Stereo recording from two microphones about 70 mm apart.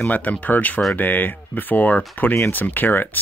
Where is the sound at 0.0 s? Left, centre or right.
Left.